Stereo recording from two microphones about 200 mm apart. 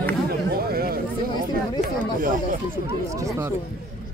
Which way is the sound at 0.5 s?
50° right (ahead or behind).